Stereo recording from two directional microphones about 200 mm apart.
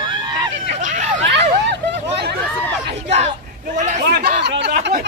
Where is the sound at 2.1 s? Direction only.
55° right (ahead or behind).